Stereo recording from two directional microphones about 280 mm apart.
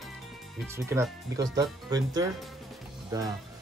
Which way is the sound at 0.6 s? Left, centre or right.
Centre.